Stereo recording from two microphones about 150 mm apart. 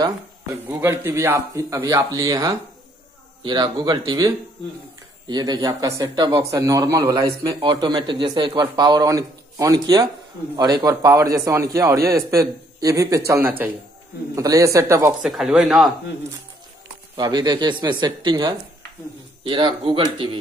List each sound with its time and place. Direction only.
0.7 s speech: 15° right (ahead or behind)
5.3 s speech: 25° right (ahead or behind)
15.2 s speech: centre (ahead or behind)
17.2 s speech: 30° right (ahead or behind)